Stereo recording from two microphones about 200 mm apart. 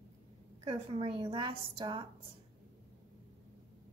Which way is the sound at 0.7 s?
30° right (ahead or behind).